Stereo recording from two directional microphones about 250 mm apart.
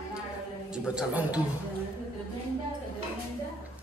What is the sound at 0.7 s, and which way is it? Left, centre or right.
Speech, centre.